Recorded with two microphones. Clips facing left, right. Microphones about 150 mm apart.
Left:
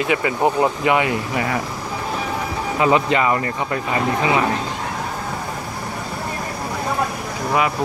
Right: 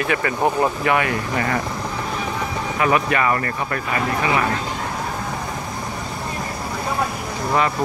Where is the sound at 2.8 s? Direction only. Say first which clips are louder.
Left 2 dB; 20° left (ahead or behind).